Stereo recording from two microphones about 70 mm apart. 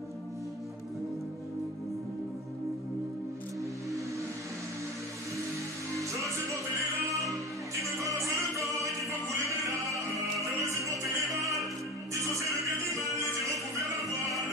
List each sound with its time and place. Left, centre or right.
7.7 s music: right